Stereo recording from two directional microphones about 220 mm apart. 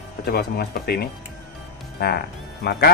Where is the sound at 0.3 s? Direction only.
45° left (ahead or behind).